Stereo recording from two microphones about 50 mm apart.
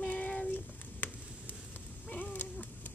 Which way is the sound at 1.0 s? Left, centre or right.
Left.